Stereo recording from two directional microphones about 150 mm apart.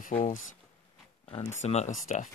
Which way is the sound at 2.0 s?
55° left (ahead or behind).